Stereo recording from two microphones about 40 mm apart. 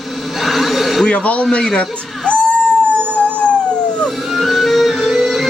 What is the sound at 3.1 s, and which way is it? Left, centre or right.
Dog, left.